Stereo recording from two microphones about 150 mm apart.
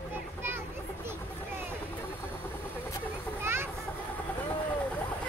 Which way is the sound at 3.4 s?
15° right (ahead or behind).